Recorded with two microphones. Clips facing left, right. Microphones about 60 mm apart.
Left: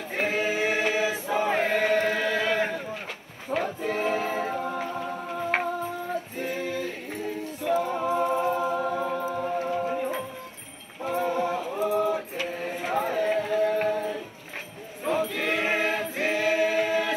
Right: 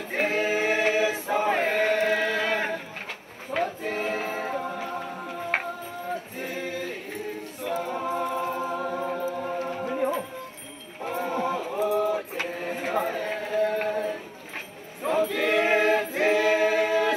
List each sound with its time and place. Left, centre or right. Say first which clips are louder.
0.1 s choir: right 2 dB; right
2.0 s chant: even; right
3.5 s choir: right 1 dB; left
5.3 s music: left 3 dB; left
6.3 s music: left 2 dB; right
7.6 s a capella: left 3 dB; left
9.8 s music: right 2 dB; right
11.1 s livestock: left 1 dB; right
11.8 s a sound: right 1 dB; left
12.4 s chant: even; right
13.5 s music: left 1 dB; right
15.0 s choir: right 2 dB; right